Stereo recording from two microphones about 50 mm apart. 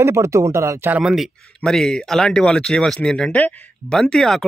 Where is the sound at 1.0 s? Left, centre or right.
Centre.